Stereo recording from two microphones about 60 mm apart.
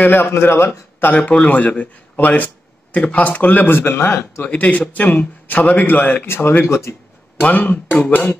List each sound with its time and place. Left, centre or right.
0.0 s a man's voice: left
1.1 s speech: left
4.5 s speech: left
6.6 s speech: left
7.3 s speech: left